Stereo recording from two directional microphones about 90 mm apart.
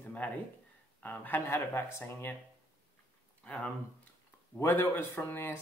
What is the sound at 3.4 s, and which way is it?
Speech, 10° left (ahead or behind).